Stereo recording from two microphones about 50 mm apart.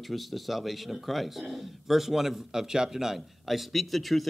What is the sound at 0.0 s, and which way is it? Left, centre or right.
Speech, centre.